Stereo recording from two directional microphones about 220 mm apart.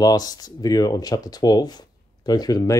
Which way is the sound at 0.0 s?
15° left (ahead or behind).